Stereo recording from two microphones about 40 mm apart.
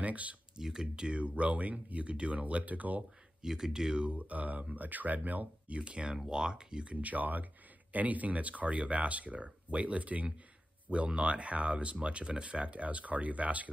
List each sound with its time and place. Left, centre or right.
0.0 s speech: right
0.6 s speech: centre; by 3.0 s right
3.4 s speech: centre
4.0 s speech: right
5.8 s speech: right
6.9 s speech: right